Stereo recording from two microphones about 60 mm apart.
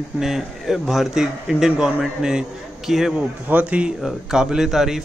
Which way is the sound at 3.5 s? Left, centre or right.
Centre.